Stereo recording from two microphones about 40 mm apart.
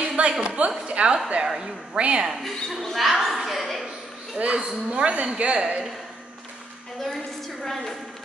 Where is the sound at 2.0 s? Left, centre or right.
Right.